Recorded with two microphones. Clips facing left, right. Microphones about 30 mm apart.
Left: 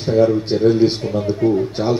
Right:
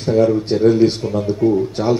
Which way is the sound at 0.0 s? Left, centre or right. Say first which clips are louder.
Even; centre.